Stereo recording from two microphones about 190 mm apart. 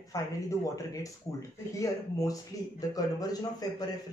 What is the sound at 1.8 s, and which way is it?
A man's voice, 15° left (ahead or behind).